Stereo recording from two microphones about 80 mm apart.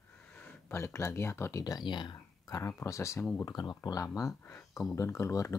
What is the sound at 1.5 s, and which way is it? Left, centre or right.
Speech, left.